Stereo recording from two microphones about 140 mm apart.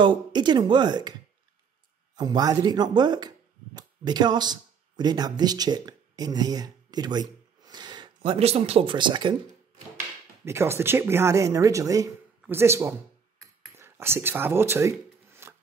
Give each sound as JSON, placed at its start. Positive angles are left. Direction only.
{"t": 0.0, "sound": "speech", "side_deg": -35}
{"t": 2.1, "sound": "speech", "side_deg": -30}
{"t": 10.4, "sound": "speech", "side_deg": -20}
{"t": 13.7, "sound": "shuffling cards", "side_deg": -15}